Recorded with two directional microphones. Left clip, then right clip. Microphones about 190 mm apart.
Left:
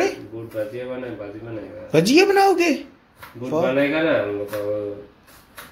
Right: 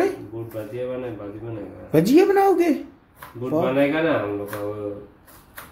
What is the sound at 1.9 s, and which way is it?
Speech, 10° right (ahead or behind).